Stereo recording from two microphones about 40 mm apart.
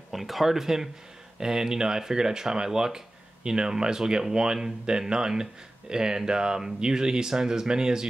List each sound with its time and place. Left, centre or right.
0.1 s speech: centre